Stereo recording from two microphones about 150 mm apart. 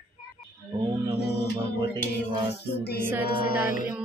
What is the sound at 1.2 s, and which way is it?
Music, 90° left.